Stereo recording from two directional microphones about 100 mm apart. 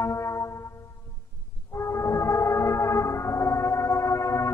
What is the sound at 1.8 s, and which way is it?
Music, 30° left (ahead or behind).